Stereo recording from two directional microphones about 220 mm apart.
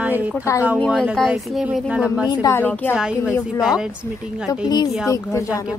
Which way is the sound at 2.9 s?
5° right (ahead or behind).